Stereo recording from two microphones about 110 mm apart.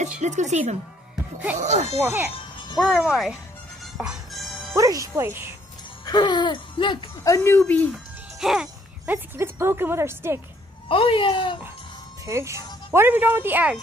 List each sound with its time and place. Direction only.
0.2 s speech: 90° right
2.0 s speech: 20° right (ahead or behind)
2.8 s speech: centre (ahead or behind)
4.0 s music: 5° right (ahead or behind)
4.7 s speech: 30° right (ahead or behind)
6.0 s laughter: 40° left (ahead or behind)
7.2 s speech: 30° left (ahead or behind)
7.5 s speech: 15° left (ahead or behind)
7.9 s speech: 5° right (ahead or behind); by 10.4 s 25° right (ahead or behind)
10.9 s laughter: 55° left (ahead or behind)
12.3 s speech: 25° right (ahead or behind)